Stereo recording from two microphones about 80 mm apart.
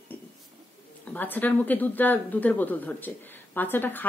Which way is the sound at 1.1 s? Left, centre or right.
Left.